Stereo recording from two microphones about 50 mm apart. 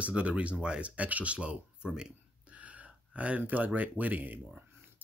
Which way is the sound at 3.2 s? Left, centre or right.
Right.